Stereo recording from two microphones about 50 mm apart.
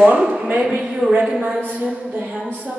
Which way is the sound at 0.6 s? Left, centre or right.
Centre.